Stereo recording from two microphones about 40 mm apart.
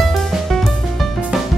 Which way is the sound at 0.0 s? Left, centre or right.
Centre.